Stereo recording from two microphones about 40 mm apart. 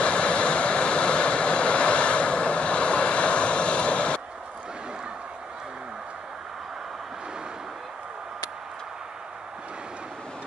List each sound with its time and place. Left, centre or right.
0.0 s vehicle: left